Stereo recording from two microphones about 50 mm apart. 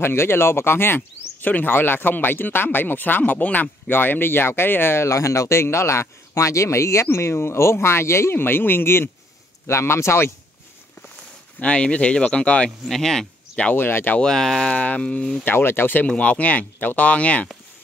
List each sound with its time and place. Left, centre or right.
0.0 s speech: left
5.0 s speech: left
9.7 s speech: left
11.6 s speech: left
12.8 s speech: centre
13.7 s speech: left
14.2 s speech: centre
14.7 s speech: left
15.4 s speech: left
16.1 s speech: left